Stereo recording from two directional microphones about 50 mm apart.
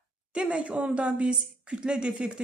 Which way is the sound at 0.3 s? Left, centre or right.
Right.